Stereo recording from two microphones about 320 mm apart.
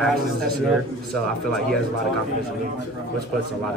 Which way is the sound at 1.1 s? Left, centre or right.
Centre.